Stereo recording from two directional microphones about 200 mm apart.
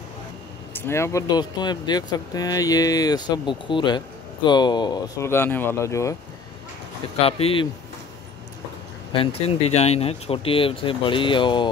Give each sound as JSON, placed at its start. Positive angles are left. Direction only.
{"t": 0.7, "sound": "speech", "side_deg": 15}
{"t": 7.2, "sound": "speech", "side_deg": 30}
{"t": 9.1, "sound": "speech", "side_deg": 30}